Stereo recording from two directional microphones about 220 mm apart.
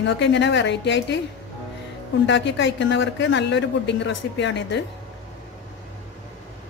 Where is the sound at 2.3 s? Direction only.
55° left (ahead or behind).